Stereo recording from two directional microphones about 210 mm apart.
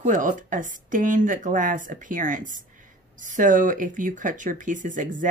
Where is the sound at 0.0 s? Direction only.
40° right (ahead or behind).